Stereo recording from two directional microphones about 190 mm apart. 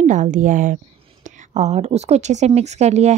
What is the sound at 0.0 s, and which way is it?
A woman's voice, 40° right (ahead or behind).